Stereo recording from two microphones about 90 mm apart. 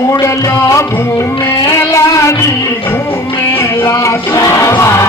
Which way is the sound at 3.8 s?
40° left (ahead or behind).